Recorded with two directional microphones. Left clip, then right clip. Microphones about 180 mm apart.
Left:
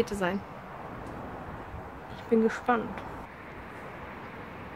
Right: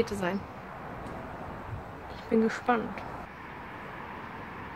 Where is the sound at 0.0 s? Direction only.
20° left (ahead or behind).